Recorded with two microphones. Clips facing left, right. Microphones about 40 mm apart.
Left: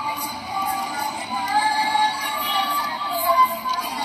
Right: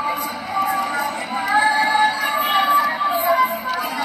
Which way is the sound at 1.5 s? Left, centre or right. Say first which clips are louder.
Right 4 dB; right.